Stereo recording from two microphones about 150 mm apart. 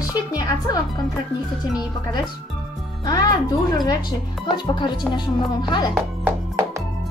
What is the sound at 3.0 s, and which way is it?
Speech, 25° left (ahead or behind).